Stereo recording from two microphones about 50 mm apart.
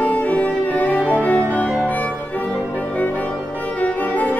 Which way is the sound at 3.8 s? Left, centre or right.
Left.